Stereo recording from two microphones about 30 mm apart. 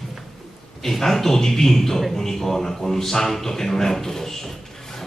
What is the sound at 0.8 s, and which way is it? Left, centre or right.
A man's voice, centre.